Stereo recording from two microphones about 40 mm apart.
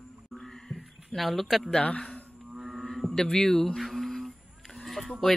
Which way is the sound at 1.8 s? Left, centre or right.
Left.